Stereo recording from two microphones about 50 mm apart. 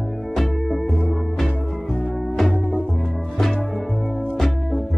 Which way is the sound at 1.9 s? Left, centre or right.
Centre.